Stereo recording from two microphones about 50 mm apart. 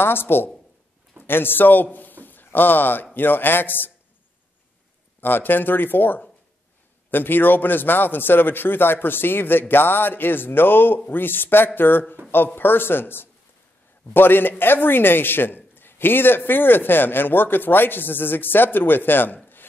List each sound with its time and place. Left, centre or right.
0.0 s a man's voice: left
5.2 s a man's voice: left